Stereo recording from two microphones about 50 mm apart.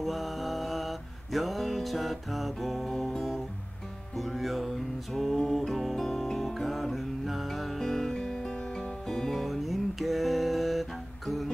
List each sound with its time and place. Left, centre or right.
0.0 s music: centre
2.9 s music: centre
4.2 s music: centre